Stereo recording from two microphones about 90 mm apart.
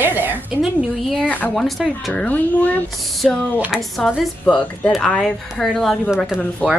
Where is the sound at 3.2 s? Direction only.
Centre (ahead or behind).